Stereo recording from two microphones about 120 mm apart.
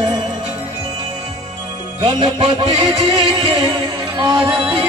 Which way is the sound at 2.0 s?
50° right (ahead or behind).